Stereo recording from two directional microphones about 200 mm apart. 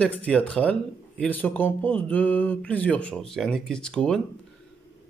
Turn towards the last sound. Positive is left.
turn(degrees=5)  # may be behind; listen again after turning